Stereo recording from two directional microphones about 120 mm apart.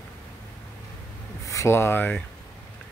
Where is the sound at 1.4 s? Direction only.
25° left (ahead or behind).